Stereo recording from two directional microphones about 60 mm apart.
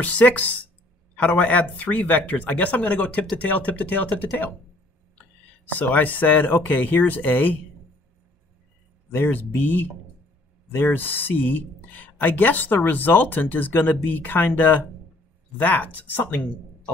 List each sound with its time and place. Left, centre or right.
0.0 s speech: left
5.8 s speech: left
9.1 s speech: left